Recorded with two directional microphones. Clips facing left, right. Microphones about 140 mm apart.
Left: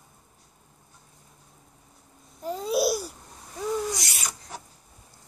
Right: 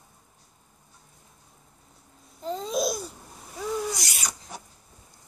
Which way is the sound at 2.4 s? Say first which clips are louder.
Left 2 dB; 10° left (ahead or behind).